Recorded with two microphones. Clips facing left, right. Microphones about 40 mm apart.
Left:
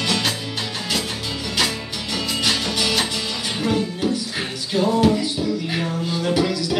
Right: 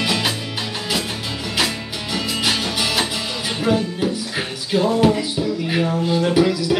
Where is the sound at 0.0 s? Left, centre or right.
Centre.